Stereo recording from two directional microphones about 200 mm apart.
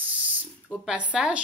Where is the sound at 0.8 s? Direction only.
5° right (ahead or behind).